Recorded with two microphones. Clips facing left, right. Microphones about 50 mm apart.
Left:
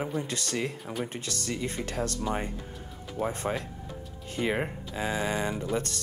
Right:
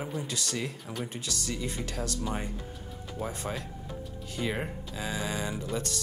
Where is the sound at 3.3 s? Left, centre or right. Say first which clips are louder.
Left 4 dB; left.